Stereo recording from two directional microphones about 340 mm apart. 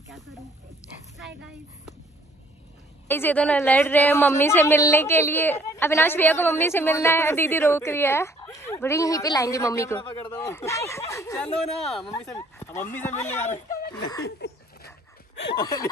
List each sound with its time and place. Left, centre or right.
1.1 s dog: centre
3.1 s a woman's voice: centre
13.4 s speech: left
14.2 s goat: left
15.5 s a woman's voice: centre